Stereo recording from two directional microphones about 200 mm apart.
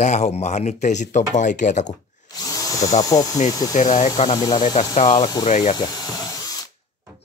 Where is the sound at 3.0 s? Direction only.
20° left (ahead or behind).